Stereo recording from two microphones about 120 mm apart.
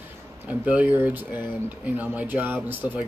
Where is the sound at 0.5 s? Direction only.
10° right (ahead or behind).